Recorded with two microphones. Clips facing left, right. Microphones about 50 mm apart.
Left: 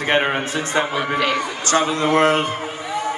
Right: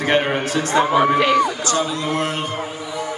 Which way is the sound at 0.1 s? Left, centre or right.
Centre.